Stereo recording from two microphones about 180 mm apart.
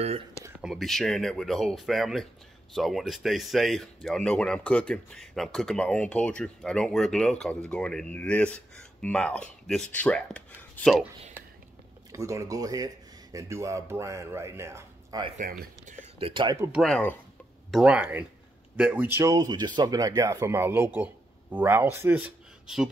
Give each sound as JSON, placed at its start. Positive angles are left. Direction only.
{"t": 0.4, "sound": "speech", "side_deg": -10}
{"t": 12.1, "sound": "speech", "side_deg": -15}
{"t": 15.3, "sound": "speech", "side_deg": -45}
{"t": 16.2, "sound": "speech", "side_deg": -30}
{"t": 16.5, "sound": "speech", "side_deg": -15}
{"t": 16.8, "sound": "speech", "side_deg": 5}